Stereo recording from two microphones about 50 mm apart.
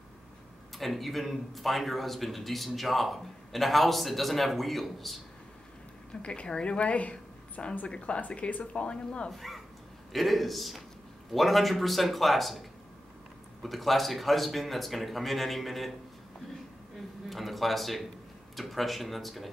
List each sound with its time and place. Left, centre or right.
0.7 s a man's voice: centre
6.2 s a woman's voice: centre
9.3 s a man's voice: centre
17.3 s a man's voice: centre